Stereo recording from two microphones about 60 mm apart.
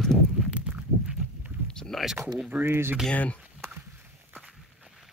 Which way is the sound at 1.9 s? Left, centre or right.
Centre.